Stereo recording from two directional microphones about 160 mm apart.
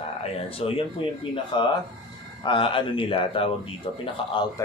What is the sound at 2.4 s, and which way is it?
A man's voice, 35° left (ahead or behind).